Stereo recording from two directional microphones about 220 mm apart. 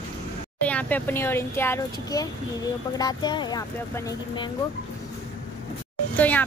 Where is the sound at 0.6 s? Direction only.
5° left (ahead or behind).